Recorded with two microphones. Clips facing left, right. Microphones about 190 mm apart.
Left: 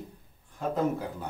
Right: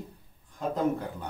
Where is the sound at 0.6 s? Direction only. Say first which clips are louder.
Even; 5° left (ahead or behind).